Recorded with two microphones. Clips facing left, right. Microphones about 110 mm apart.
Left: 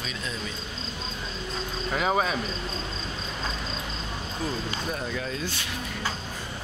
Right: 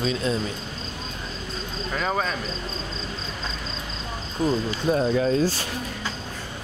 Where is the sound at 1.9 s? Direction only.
10° left (ahead or behind).